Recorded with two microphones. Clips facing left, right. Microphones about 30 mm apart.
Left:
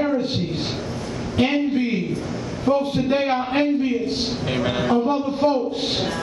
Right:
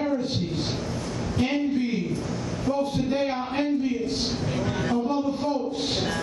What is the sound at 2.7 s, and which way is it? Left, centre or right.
A man's voice, left.